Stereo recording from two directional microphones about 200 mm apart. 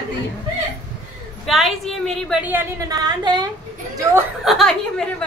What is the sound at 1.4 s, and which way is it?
A woman's voice, centre (ahead or behind).